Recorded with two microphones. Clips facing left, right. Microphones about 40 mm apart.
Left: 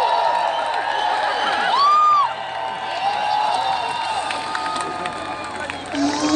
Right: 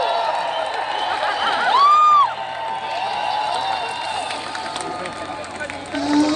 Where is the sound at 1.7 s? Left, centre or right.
Right.